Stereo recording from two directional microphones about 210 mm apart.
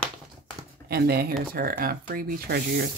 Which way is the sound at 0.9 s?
50° right (ahead or behind).